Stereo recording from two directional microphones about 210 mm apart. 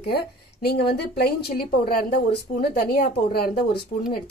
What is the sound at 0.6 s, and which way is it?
Speech, 50° left (ahead or behind).